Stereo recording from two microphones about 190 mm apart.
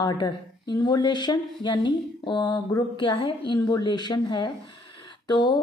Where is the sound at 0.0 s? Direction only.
20° left (ahead or behind).